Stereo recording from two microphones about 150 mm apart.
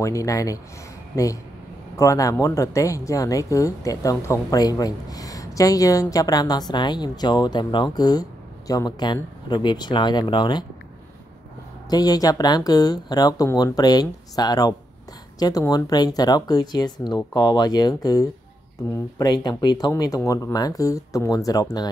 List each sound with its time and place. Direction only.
0.0 s speech: 20° left (ahead or behind)
11.9 s speech: 25° left (ahead or behind)